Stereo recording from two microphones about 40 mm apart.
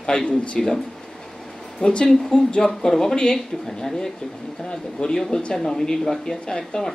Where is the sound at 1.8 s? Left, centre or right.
Left.